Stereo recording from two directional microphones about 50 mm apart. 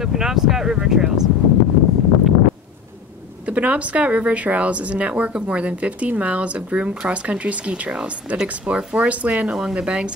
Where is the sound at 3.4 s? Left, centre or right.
Right.